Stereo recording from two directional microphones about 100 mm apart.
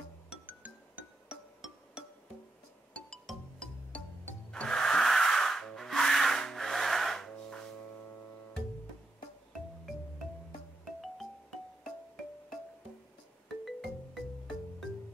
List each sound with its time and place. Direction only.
0.5 s music: 15° right (ahead or behind)
2.9 s music: 5° left (ahead or behind)
13.7 s music: centre (ahead or behind)